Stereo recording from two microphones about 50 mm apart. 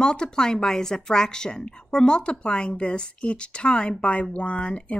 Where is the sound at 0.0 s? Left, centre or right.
Centre.